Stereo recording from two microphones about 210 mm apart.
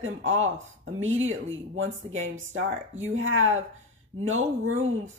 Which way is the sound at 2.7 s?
35° right (ahead or behind).